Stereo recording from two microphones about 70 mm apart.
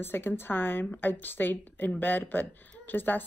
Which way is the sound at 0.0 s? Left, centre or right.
Left.